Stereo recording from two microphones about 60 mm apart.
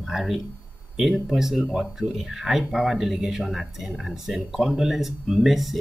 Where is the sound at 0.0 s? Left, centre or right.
Centre.